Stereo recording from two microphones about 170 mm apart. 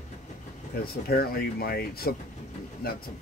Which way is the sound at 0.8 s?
65° left (ahead or behind).